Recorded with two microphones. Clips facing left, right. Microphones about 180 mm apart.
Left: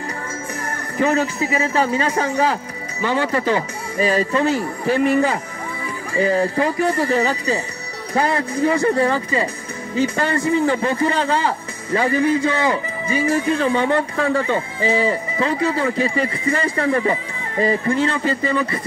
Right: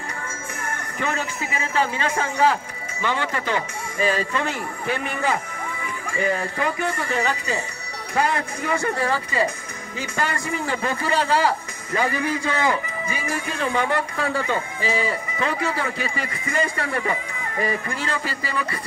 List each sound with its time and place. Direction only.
0.7 s speech: 35° left (ahead or behind)